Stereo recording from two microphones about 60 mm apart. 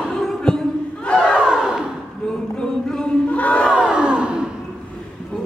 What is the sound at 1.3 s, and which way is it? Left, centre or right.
Battle cry, centre.